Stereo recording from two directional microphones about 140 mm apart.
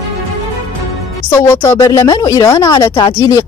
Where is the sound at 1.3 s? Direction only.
20° left (ahead or behind).